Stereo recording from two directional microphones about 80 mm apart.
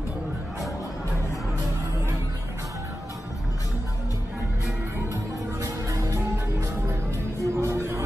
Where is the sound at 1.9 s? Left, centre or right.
Right.